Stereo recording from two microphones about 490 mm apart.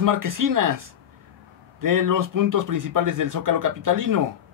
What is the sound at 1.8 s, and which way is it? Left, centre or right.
Speech, right.